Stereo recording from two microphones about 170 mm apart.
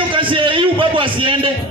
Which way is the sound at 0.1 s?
30° right (ahead or behind).